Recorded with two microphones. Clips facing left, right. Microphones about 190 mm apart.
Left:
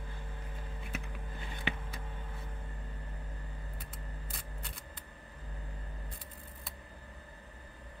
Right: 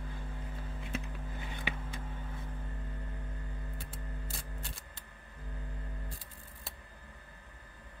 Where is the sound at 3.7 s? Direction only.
30° right (ahead or behind).